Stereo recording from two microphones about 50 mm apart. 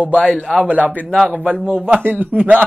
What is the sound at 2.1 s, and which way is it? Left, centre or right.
Speech, right.